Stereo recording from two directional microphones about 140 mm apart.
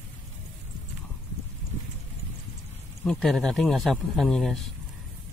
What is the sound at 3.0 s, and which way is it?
Speech, 5° left (ahead or behind).